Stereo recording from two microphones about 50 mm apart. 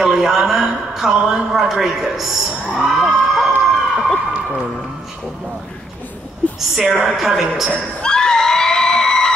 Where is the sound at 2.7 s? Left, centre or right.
Centre.